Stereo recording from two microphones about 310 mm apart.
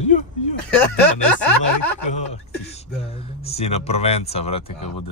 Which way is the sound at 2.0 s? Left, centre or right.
Left.